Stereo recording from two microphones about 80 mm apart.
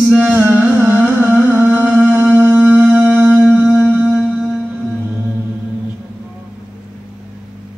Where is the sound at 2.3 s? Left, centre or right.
Right.